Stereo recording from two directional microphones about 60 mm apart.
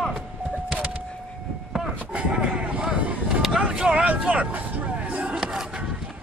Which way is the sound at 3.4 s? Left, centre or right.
Centre.